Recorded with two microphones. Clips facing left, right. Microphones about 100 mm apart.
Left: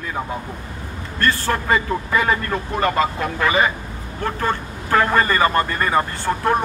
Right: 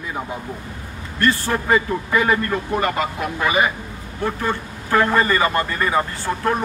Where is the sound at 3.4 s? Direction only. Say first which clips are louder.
Left 1 dB; 15° right (ahead or behind).